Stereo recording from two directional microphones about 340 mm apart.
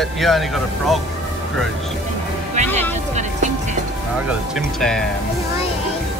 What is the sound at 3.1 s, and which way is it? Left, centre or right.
Music, right.